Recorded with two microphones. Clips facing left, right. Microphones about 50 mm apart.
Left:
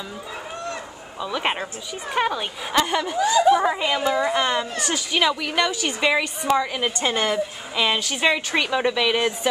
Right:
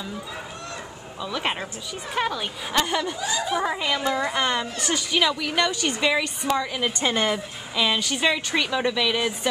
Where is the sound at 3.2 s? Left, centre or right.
Left.